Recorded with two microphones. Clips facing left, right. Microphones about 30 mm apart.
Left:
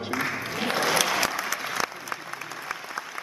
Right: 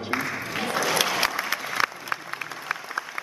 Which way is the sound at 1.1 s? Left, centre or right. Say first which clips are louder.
Right 1 dB; right.